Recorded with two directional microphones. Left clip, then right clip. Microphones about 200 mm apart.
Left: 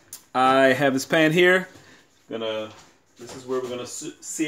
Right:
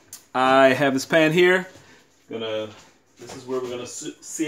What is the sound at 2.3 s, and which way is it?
Speech, 15° left (ahead or behind).